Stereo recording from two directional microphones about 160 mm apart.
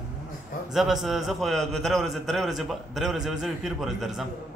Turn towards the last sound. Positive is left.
turn(degrees=0)  # may be behind; listen again after turning